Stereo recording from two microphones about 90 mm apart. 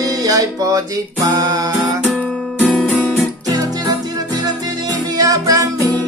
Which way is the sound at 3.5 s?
45° right (ahead or behind).